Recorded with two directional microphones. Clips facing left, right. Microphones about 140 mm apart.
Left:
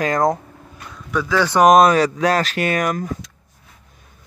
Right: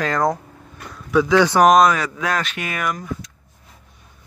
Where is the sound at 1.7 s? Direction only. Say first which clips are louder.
Left 2 dB; 30° left (ahead or behind).